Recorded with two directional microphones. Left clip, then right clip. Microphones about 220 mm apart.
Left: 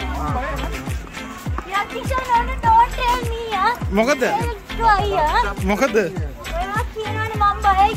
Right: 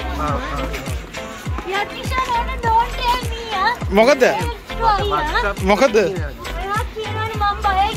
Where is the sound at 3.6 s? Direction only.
10° left (ahead or behind).